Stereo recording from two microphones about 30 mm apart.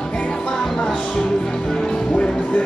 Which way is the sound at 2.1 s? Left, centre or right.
Left.